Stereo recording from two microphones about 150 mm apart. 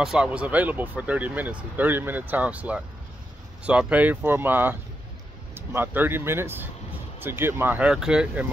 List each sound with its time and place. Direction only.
0.0 s speech: 5° right (ahead or behind)